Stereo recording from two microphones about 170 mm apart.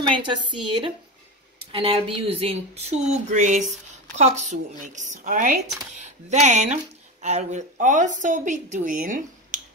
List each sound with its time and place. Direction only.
0.2 s speech: 30° right (ahead or behind); by 9.6 s 50° right (ahead or behind)